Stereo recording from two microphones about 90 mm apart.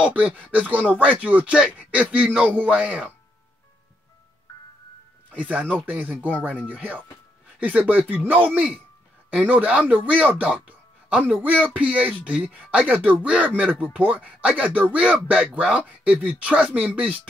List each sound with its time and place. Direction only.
0.0 s speech: 15° right (ahead or behind)
5.4 s speech: 15° right (ahead or behind)